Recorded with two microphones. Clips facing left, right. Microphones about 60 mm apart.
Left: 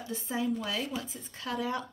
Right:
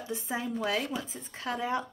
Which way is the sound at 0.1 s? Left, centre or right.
Right.